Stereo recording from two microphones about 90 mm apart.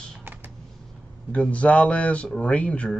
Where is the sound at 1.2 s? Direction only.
15° left (ahead or behind).